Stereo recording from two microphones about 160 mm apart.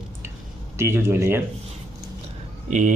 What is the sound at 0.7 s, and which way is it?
Speech, 15° right (ahead or behind).